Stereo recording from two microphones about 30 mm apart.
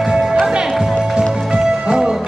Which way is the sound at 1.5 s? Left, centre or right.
Right.